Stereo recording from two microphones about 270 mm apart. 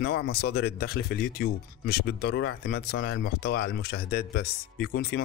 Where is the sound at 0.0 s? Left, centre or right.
Left.